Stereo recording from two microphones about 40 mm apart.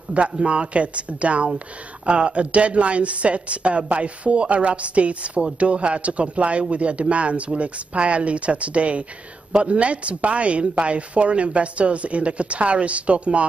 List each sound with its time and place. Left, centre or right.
0.1 s speech: right